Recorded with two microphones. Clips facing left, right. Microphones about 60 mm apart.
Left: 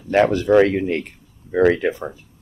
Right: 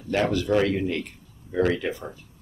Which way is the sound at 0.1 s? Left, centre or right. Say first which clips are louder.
Left 8 dB; left.